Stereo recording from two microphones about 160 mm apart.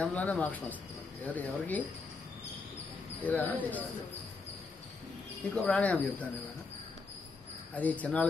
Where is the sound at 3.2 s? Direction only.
10° left (ahead or behind).